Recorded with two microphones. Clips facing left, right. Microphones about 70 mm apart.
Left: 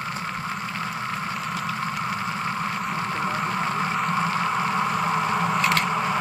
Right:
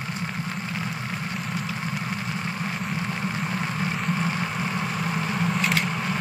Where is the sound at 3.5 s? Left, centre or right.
Left; by 5.8 s centre.